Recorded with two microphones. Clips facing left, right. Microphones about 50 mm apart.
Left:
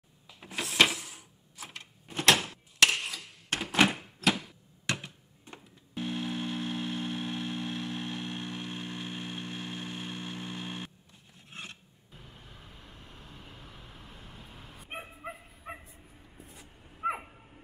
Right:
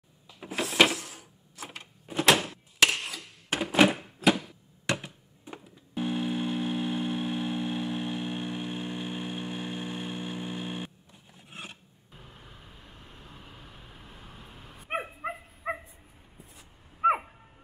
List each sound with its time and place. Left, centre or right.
0.3 s a sound: centre
14.9 s dog: right
17.0 s dog: right